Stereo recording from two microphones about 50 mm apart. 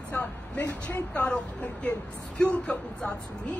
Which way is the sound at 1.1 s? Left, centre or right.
Left.